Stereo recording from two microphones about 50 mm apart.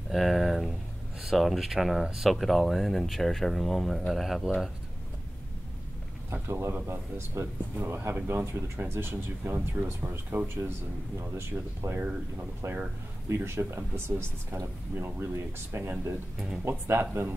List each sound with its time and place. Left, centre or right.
0.1 s speech: centre
6.3 s speech: right
7.7 s speech: right
8.8 s speech: right
9.4 s speech: right
11.3 s speech: right
13.3 s speech: right